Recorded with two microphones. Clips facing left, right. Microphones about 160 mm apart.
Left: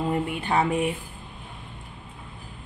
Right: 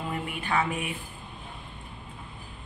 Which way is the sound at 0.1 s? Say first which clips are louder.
Left 5 dB; 30° left (ahead or behind).